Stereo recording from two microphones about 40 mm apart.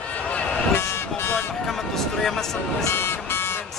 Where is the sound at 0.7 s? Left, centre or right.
Left.